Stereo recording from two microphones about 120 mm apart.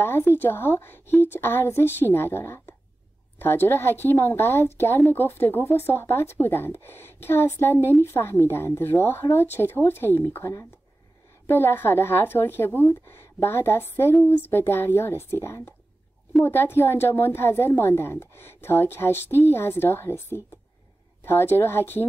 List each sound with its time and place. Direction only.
0.0 s a woman's voice: 20° left (ahead or behind)